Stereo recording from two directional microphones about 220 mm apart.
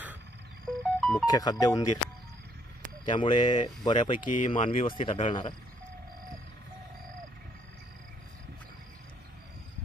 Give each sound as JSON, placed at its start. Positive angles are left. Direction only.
{"t": 0.7, "sound": "music", "side_deg": 0}
{"t": 1.2, "sound": "speech", "side_deg": 20}
{"t": 3.1, "sound": "speech", "side_deg": 20}